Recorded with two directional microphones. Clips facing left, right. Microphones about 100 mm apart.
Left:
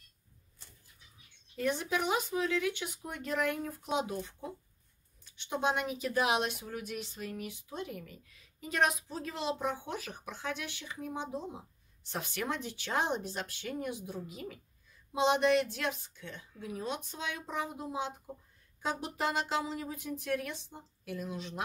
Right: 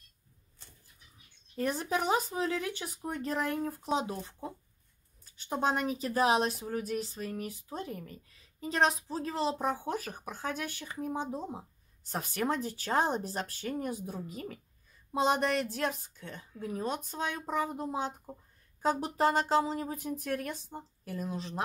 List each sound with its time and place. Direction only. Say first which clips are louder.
1.6 s a woman's voice: right 1 dB; 40° right (ahead or behind)